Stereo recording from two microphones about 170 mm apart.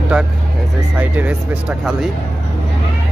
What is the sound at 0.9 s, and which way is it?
Speech, 10° right (ahead or behind).